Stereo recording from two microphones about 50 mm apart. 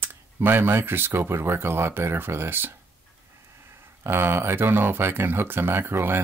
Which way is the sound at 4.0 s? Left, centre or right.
Right.